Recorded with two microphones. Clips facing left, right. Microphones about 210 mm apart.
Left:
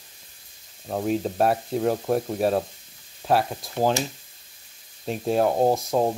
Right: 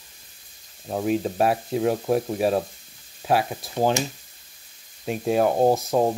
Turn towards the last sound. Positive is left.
turn(degrees=0)  # may be behind; listen again after turning